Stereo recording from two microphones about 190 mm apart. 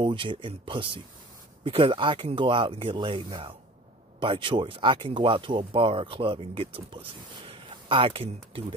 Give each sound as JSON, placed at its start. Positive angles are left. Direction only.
{"t": 0.0, "sound": "speech", "side_deg": -25}